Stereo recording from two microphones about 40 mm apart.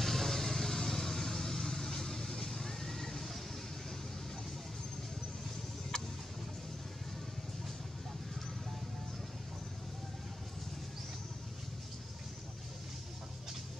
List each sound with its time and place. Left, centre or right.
0.0 s vehicle: centre